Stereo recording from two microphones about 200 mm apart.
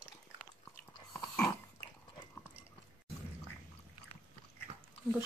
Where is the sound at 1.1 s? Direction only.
15° left (ahead or behind).